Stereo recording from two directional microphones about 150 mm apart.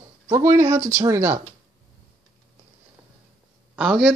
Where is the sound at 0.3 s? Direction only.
20° right (ahead or behind).